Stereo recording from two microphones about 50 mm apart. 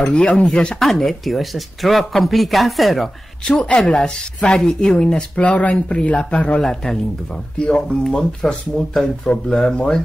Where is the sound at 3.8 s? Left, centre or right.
Centre.